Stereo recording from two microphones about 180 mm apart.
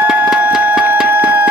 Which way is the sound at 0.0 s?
5° right (ahead or behind).